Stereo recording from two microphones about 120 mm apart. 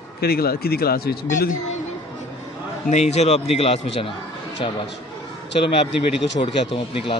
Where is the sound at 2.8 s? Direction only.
70° left (ahead or behind).